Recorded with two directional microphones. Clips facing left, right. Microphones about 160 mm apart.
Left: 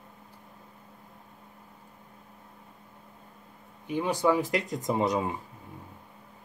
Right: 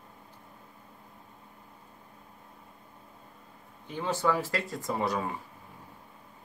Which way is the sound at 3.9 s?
15° left (ahead or behind).